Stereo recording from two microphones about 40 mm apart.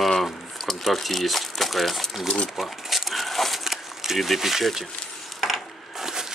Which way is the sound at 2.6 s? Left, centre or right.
Centre.